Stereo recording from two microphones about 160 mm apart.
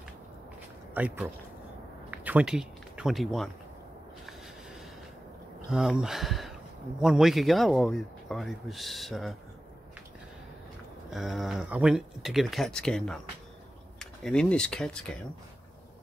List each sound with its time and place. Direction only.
0.9 s speech: 10° right (ahead or behind)
2.0 s a sound: 10° right (ahead or behind)
5.7 s speech: 5° right (ahead or behind)
11.1 s speech: centre (ahead or behind)